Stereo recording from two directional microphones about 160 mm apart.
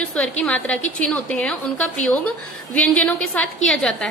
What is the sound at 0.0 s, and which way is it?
A woman's voice, 10° left (ahead or behind).